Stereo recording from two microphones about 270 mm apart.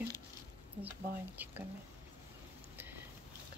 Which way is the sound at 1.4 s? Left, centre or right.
Centre.